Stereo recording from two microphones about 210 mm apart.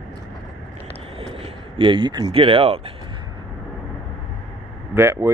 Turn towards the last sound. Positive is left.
turn(degrees=-15)  # may be behind; listen again after turning